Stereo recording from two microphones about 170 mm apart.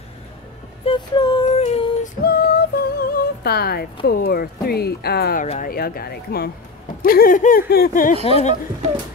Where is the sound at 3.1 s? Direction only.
65° left (ahead or behind).